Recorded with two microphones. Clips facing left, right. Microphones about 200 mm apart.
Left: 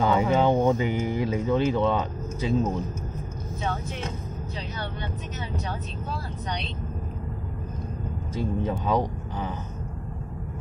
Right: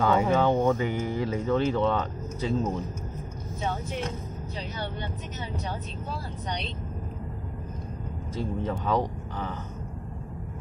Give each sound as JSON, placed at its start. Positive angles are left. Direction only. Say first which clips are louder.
{"t": 0.0, "sound": "speech", "louder": "left 1 dB", "side_deg": 20}
{"t": 3.6, "sound": "speech", "louder": "right 1 dB", "side_deg": -15}
{"t": 8.4, "sound": "speech", "louder": "left 3 dB", "side_deg": 15}